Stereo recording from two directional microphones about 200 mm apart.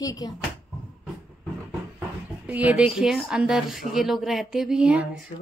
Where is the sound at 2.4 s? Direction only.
5° right (ahead or behind).